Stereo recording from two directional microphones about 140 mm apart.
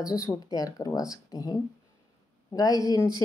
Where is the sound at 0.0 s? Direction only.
25° left (ahead or behind).